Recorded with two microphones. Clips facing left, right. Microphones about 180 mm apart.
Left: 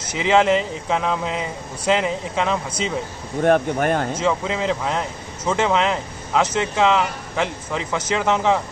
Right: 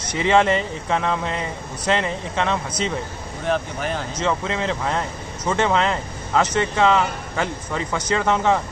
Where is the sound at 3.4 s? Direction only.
55° left (ahead or behind).